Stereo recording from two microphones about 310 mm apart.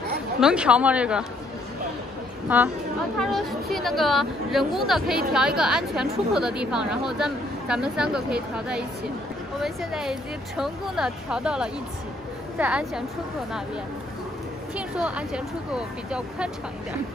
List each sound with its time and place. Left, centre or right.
0.4 s a woman's voice: centre
2.5 s a woman's voice: centre
14.8 s a woman's voice: centre